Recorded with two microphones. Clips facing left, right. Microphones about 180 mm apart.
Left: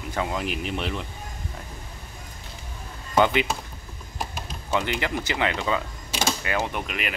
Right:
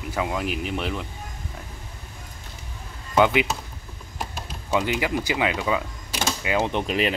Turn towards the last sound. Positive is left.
turn(degrees=-30)  # may be behind; listen again after turning